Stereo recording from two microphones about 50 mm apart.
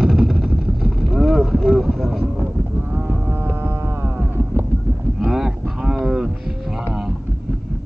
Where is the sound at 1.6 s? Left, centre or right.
Centre.